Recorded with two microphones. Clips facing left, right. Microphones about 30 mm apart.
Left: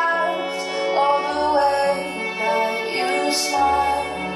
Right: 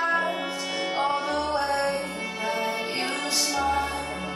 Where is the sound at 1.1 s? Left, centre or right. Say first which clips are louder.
Left 7 dB; left.